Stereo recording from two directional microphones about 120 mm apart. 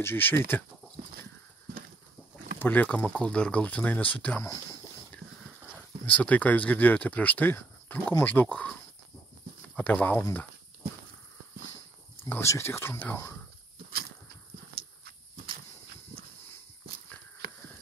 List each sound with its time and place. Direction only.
0.0 s speech: 15° left (ahead or behind)
2.6 s speech: 15° left (ahead or behind)
5.8 s speech: 10° left (ahead or behind)
9.8 s speech: 15° left (ahead or behind)
12.2 s speech: 20° left (ahead or behind)